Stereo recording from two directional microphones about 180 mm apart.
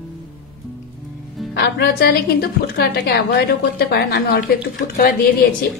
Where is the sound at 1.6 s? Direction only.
65° left (ahead or behind).